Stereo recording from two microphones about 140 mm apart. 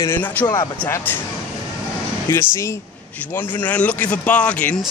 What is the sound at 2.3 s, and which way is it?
Speech, 20° left (ahead or behind).